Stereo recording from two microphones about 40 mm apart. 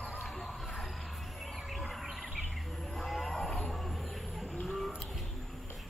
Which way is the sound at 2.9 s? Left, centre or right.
Centre.